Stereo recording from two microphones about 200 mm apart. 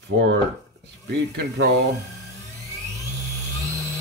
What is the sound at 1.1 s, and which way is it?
Speech, 60° right (ahead or behind).